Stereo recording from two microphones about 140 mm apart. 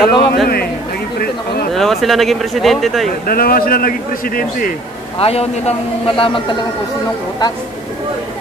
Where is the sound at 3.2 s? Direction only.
90° left.